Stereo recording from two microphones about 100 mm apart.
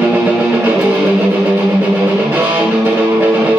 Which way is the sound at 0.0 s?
10° right (ahead or behind).